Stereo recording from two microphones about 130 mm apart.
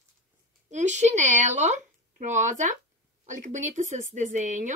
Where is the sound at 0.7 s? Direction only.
65° right (ahead or behind).